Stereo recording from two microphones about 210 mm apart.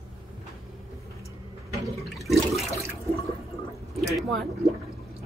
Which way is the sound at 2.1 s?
Centre (ahead or behind).